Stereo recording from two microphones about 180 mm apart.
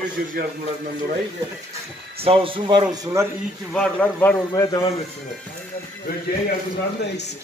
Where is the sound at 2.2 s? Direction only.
30° right (ahead or behind).